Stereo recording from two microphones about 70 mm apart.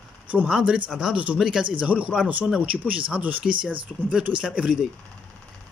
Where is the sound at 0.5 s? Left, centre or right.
Centre.